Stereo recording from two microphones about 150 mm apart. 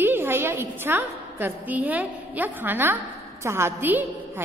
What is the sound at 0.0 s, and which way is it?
A woman's voice, 15° right (ahead or behind).